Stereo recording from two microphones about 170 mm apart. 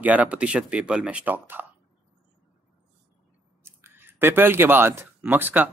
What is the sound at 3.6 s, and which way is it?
Speech, 15° right (ahead or behind).